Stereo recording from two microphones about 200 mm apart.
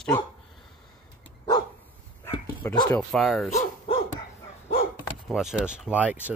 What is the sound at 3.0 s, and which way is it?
Speech, centre (ahead or behind).